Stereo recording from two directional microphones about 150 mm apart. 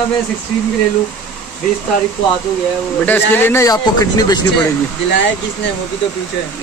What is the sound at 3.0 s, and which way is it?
Speech, 15° left (ahead or behind).